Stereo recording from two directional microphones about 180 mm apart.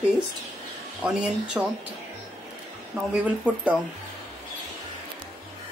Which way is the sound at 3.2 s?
5° right (ahead or behind).